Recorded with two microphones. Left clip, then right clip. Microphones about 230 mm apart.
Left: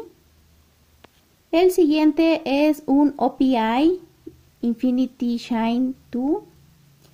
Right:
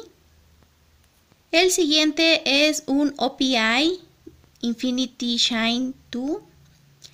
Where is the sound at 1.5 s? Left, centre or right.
Centre.